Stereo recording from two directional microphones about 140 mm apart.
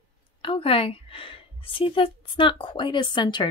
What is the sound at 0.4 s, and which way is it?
A woman's voice, 40° left (ahead or behind).